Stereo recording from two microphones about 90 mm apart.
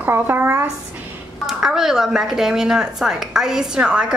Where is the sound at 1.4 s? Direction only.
5° right (ahead or behind).